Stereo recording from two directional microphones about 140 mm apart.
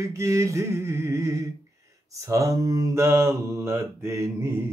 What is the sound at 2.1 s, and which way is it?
Mantra, 20° right (ahead or behind).